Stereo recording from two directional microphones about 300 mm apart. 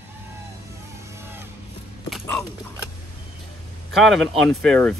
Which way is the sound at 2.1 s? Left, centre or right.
Centre.